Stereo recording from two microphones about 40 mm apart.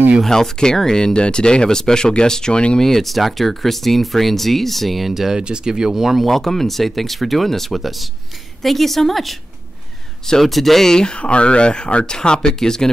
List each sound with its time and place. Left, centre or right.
0.3 s speech: centre
2.8 s speech: centre
5.4 s speech: right; by 6.3 s centre
6.3 s speech: centre
10.2 s speech: centre
11.1 s speech: left; by 12.9 s centre